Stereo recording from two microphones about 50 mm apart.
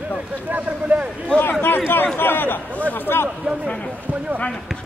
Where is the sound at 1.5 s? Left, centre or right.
Left.